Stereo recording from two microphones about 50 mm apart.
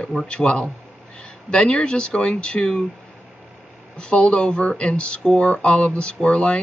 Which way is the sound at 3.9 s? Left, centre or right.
Left.